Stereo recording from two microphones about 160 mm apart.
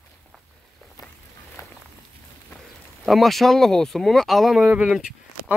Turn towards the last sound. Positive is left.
turn(degrees=-5)  # may be behind; listen again after turning